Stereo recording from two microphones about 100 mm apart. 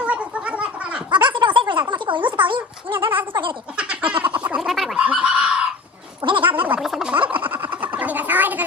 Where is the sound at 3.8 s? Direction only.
10° right (ahead or behind).